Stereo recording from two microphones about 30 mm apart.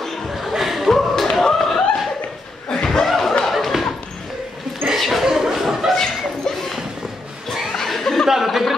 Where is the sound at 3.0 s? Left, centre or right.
Centre.